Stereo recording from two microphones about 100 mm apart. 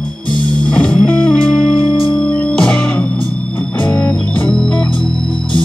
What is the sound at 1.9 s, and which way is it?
Music, 50° left (ahead or behind).